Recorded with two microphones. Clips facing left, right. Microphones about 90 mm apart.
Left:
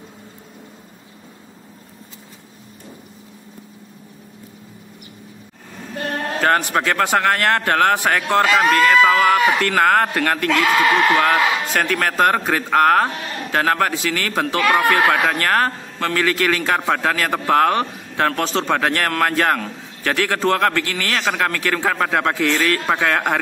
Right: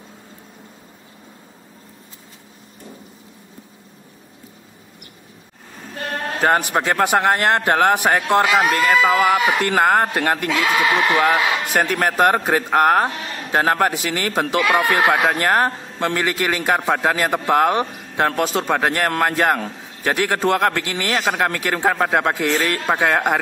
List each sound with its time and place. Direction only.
6.4 s a man's voice: 15° right (ahead or behind)